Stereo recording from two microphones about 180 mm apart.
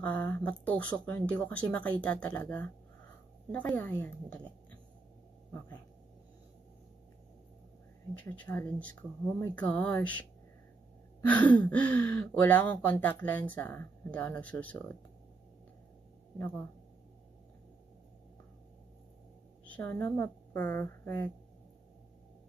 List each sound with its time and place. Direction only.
0.0 s speech: 10° left (ahead or behind)
8.2 s speech: 10° left (ahead or behind)
11.2 s speech: 10° left (ahead or behind)
16.3 s speech: 15° left (ahead or behind)
19.6 s a woman's voice: 10° left (ahead or behind)